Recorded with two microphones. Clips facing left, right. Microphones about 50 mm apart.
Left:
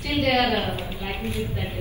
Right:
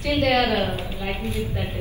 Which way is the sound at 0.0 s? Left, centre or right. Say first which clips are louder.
Right 1 dB; right.